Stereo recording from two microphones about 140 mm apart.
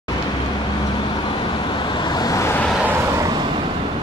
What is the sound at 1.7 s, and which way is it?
Vehicle, 35° left (ahead or behind).